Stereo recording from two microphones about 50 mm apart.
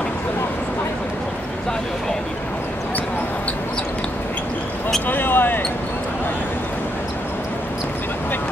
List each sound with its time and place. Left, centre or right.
5.0 s basketball bounce: left